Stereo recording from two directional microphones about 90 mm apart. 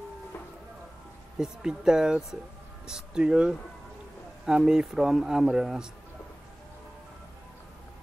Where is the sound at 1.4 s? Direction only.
5° right (ahead or behind).